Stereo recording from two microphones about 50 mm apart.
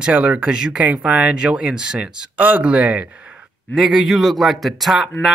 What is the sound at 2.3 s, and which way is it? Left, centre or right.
Speech, right.